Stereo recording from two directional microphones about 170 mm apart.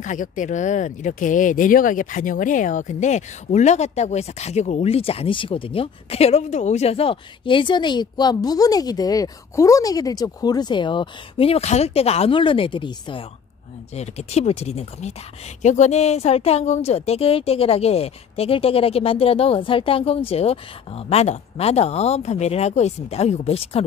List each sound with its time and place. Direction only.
0.0 s speech: 45° left (ahead or behind); by 13.2 s 30° left (ahead or behind)
13.9 s speech: 40° left (ahead or behind)